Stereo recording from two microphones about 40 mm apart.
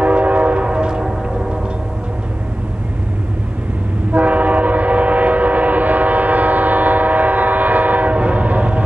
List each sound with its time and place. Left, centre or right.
0.0 s train: right
4.1 s train: right